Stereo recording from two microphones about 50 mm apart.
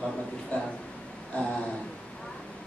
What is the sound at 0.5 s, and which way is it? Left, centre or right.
Speech, left.